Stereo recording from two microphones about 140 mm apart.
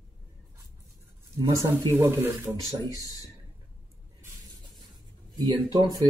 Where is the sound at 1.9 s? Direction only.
20° right (ahead or behind).